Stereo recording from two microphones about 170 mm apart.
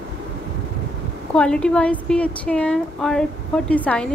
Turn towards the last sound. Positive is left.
turn(degrees=5)  # may be behind; listen again after turning